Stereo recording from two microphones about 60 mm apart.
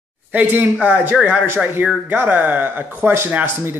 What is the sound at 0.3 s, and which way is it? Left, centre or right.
Speech, right.